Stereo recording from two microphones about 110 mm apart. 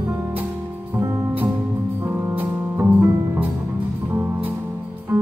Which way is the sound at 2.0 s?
15° right (ahead or behind).